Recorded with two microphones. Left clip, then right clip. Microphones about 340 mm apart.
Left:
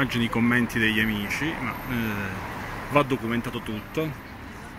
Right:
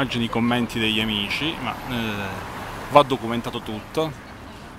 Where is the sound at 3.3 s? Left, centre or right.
Right.